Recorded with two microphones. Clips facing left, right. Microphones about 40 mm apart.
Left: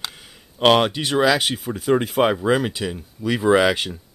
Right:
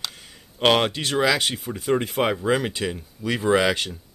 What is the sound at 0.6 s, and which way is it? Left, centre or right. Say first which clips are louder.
Speech: left 3 dB; centre.